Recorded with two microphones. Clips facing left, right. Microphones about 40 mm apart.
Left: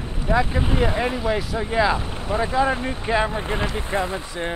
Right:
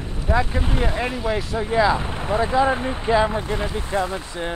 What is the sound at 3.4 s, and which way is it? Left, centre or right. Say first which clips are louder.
Speech: even; left.